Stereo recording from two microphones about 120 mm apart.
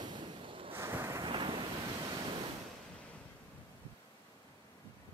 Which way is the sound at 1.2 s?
45° right (ahead or behind).